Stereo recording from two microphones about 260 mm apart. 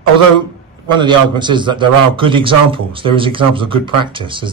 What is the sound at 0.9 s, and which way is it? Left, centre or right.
A man's voice, centre.